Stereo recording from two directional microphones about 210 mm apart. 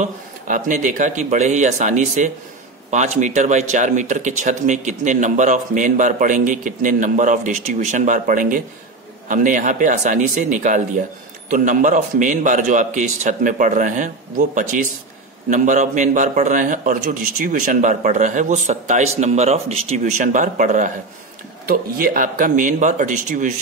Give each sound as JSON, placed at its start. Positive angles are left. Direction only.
{"t": 0.0, "sound": "speech", "side_deg": -40}